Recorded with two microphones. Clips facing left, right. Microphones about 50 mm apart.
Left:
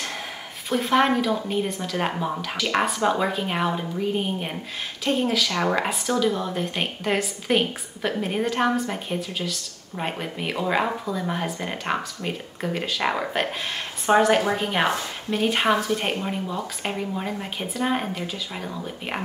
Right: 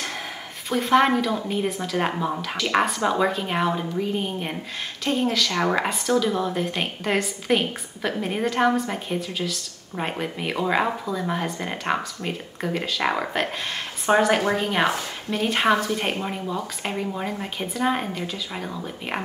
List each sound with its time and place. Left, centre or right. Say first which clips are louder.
0.7 s a woman's voice: right 1 dB; centre